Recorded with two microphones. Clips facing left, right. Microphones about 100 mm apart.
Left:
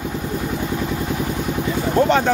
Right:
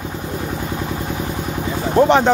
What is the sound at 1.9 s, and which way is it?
Speech, 15° right (ahead or behind).